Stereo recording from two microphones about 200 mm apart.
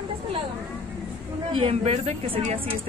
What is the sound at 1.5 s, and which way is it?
A woman's voice, 30° right (ahead or behind).